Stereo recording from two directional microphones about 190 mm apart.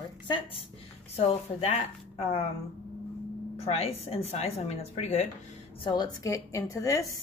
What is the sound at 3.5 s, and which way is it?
A woman's voice, 35° left (ahead or behind).